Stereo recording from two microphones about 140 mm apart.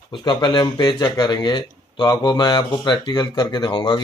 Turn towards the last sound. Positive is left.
turn(degrees=35)  # may be behind; listen again after turning